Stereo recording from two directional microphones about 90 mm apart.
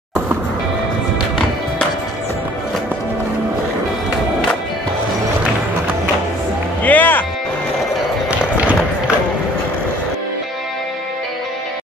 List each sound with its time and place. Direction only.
6.8 s music: 20° left (ahead or behind)
8.5 s run: 15° right (ahead or behind)